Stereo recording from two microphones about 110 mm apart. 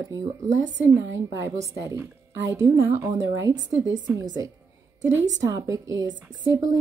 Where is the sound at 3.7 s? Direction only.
40° left (ahead or behind).